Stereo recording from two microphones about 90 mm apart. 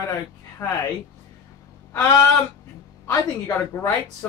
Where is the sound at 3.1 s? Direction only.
25° left (ahead or behind).